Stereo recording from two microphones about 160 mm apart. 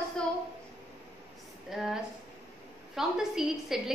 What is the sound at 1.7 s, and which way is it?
A woman's voice, centre (ahead or behind).